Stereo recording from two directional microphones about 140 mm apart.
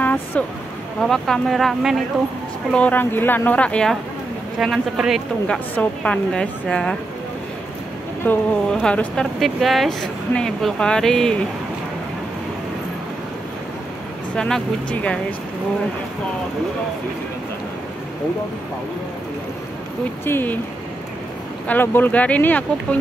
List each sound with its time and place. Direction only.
0.0 s a sound: 15° left (ahead or behind)
0.9 s a woman's voice: 5° left (ahead or behind)
2.7 s a woman's voice: 10° left (ahead or behind)
5.8 s speech: 10° left (ahead or behind)
8.3 s a woman's voice: 10° left (ahead or behind)
14.3 s speech: 5° left (ahead or behind)
20.2 s speech: 15° left (ahead or behind)
21.6 s speech: 15° left (ahead or behind)